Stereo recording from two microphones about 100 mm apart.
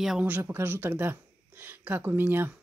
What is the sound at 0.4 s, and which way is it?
Speech, 25° right (ahead or behind).